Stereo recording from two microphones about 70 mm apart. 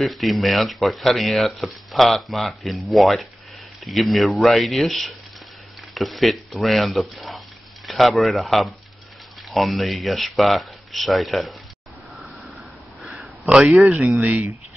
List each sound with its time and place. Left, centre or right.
0.0 s speech: centre
13.0 s a sound: centre
14.2 s speech: centre